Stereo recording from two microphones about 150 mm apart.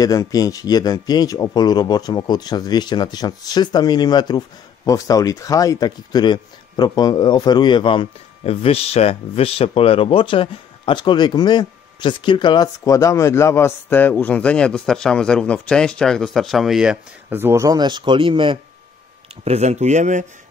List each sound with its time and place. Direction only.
0.0 s speech: 25° left (ahead or behind); by 18.6 s 35° right (ahead or behind)
19.4 s speech: 45° right (ahead or behind)